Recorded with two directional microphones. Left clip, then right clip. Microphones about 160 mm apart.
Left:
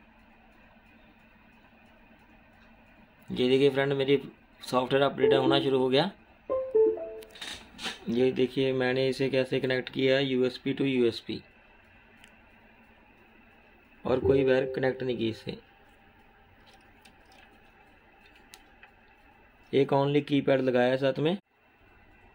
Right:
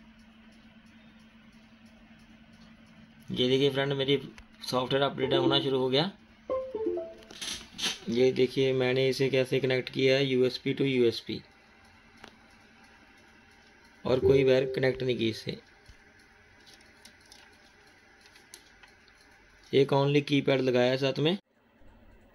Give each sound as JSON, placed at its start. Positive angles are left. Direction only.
{"t": 3.3, "sound": "a man's voice", "side_deg": 15}
{"t": 8.1, "sound": "speech", "side_deg": 10}
{"t": 14.0, "sound": "speech", "side_deg": 5}
{"t": 19.7, "sound": "speech", "side_deg": 5}